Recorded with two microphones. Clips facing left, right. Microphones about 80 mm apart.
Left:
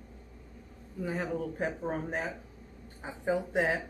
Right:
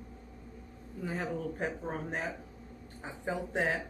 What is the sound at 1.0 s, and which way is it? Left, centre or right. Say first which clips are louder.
Speech: left 2 dB; centre.